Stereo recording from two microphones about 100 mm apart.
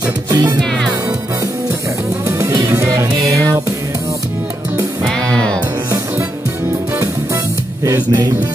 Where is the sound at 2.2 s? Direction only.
35° right (ahead or behind).